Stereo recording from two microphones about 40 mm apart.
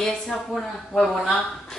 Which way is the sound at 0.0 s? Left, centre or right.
Centre.